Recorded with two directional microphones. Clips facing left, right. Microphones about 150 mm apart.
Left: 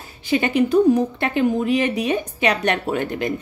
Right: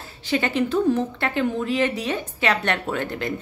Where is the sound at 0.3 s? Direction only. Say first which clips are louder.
Left 4 dB; 15° left (ahead or behind).